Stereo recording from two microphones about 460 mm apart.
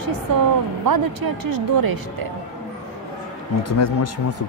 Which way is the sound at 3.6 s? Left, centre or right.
Left.